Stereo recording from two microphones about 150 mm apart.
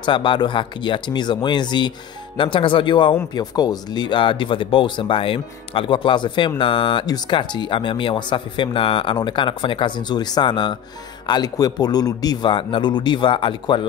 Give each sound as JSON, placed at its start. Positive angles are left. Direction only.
{"t": 0.0, "sound": "speech", "side_deg": 35}